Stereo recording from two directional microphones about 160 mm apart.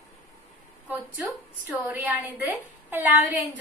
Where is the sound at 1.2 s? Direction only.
5° right (ahead or behind).